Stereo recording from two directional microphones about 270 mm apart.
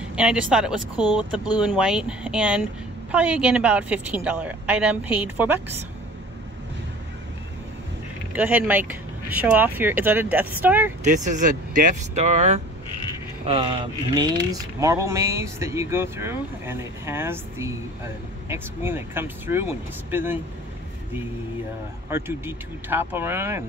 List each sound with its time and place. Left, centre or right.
0.1 s a woman's voice: centre
8.3 s speech: centre
11.1 s speech: right; by 20.3 s centre
22.1 s speech: centre